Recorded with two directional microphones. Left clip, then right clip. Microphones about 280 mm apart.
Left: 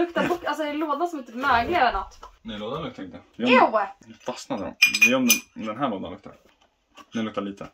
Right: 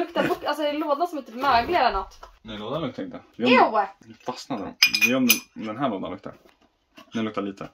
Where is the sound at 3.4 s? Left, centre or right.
Centre.